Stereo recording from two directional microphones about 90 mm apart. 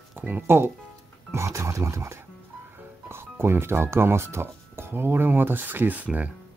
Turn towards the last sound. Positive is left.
turn(degrees=-15)  # may be behind; listen again after turning